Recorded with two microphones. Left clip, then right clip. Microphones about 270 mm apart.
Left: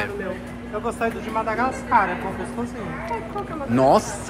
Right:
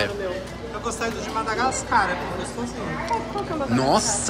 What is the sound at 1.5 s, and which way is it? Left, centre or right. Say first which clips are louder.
Speech: left 1 dB; centre.